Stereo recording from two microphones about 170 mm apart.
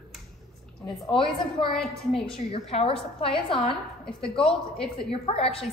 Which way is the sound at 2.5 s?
35° left (ahead or behind).